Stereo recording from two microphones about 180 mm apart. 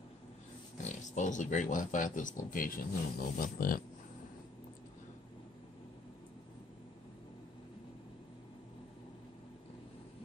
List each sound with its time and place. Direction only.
0.8 s speech: 45° left (ahead or behind)